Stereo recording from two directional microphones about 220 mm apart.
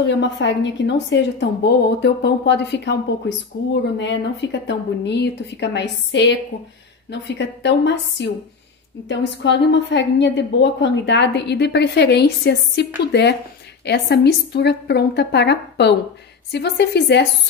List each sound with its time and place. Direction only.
0.0 s a woman's voice: 55° left (ahead or behind)